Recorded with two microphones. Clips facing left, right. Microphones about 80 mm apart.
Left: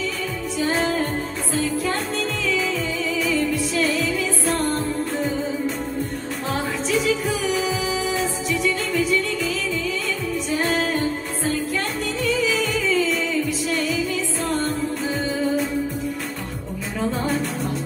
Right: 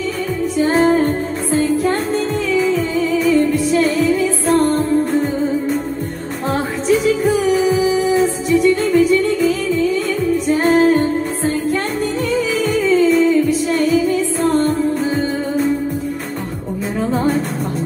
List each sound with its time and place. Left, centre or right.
0.6 s music: right
6.9 s music: right
10.6 s music: right
13.0 s music: right